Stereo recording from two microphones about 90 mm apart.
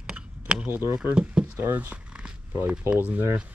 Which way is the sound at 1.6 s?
20° right (ahead or behind).